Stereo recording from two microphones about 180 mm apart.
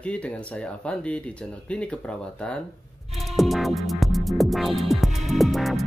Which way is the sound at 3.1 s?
Centre (ahead or behind).